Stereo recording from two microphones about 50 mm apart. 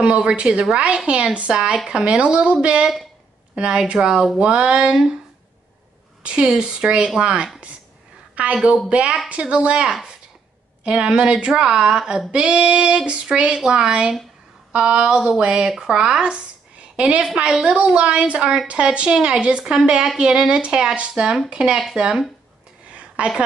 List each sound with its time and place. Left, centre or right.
0.0 s female singing: centre
4.4 s a woman's voice: centre
6.4 s a woman's voice: centre
7.2 s female singing: centre
8.6 s female singing: right
10.8 s a woman's voice: centre
12.3 s female singing: right
13.6 s a woman's voice: centre
17.4 s female singing: centre
21.1 s a woman's voice: centre
22.8 s a sound: right